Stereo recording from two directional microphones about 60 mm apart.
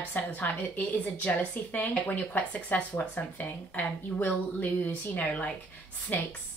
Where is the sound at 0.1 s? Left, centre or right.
Left.